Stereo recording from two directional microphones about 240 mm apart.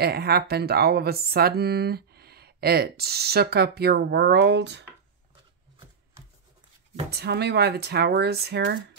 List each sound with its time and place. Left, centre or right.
0.0 s speech: right
7.1 s speech: right